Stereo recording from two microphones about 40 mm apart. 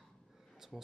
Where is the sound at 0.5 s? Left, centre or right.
Centre.